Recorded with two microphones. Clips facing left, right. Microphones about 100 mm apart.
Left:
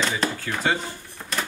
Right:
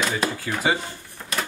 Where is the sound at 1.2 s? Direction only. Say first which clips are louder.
Even; 10° left (ahead or behind).